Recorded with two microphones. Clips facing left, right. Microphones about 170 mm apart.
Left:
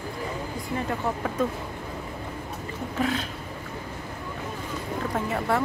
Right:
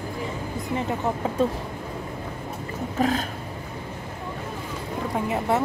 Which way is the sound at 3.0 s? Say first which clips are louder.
Right 4 dB; 40° right (ahead or behind).